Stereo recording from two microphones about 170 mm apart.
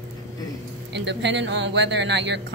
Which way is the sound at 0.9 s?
90° right.